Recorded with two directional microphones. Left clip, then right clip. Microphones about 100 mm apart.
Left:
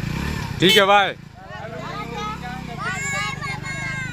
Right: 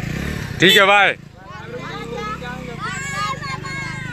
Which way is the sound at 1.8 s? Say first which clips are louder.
Right 1 dB; 20° left (ahead or behind).